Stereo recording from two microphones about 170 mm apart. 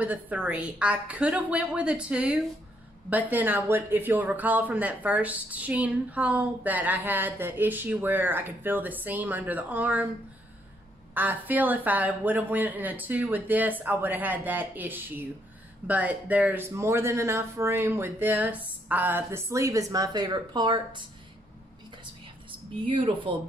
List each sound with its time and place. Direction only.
0.0 s speech: 10° right (ahead or behind)
11.1 s speech: 10° right (ahead or behind); by 21.0 s 25° right (ahead or behind)
22.8 s speech: 30° right (ahead or behind)